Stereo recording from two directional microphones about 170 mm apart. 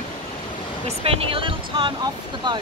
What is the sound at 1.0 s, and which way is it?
Speech, 35° right (ahead or behind).